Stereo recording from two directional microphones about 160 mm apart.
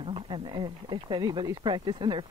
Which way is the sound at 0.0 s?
30° right (ahead or behind).